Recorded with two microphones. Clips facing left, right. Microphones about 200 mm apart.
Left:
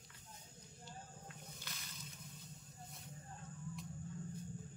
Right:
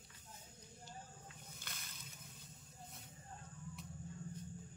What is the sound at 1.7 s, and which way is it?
Slosh, 50° right (ahead or behind).